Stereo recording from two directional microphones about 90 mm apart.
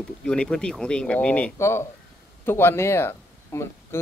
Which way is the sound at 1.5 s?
30° left (ahead or behind).